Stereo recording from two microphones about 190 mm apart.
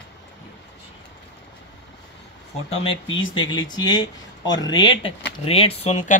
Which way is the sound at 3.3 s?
25° left (ahead or behind).